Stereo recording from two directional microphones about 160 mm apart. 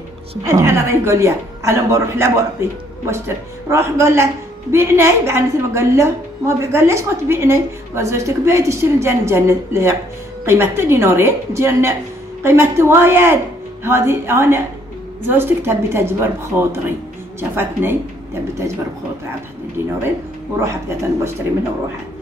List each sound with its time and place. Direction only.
0.4 s a woman's voice: 15° right (ahead or behind)